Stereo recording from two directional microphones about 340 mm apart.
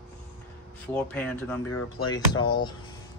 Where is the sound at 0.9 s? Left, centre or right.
Centre.